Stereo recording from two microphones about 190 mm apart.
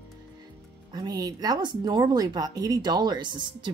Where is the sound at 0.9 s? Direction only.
20° right (ahead or behind).